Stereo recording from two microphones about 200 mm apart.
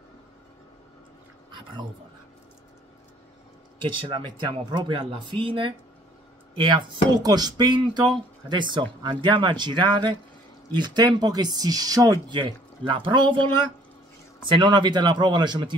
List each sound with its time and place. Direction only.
1.5 s a sound: 20° right (ahead or behind)
3.8 s speech: 25° right (ahead or behind)
14.4 s speech: 25° right (ahead or behind)